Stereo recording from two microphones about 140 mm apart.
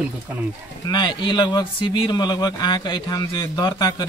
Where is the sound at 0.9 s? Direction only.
30° left (ahead or behind).